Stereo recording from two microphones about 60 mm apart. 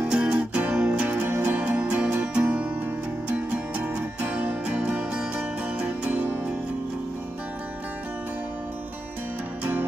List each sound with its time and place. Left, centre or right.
0.0 s music: centre
1.2 s music: right
1.6 s music: right
9.6 s music: right